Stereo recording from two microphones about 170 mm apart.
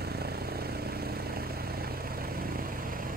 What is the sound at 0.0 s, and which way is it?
Vehicle, 65° right (ahead or behind).